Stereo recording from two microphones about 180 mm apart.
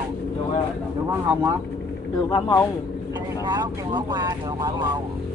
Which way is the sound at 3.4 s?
25° right (ahead or behind).